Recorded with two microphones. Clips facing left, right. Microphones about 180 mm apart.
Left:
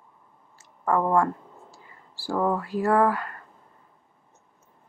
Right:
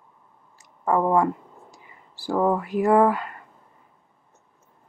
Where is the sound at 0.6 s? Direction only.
15° right (ahead or behind).